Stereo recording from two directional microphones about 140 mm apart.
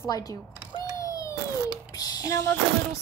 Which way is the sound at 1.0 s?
25° left (ahead or behind).